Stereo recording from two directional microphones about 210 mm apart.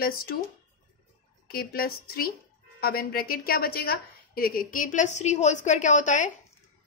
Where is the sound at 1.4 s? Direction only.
45° left (ahead or behind).